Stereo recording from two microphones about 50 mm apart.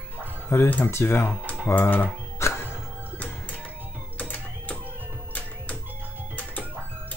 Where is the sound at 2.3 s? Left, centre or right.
Left.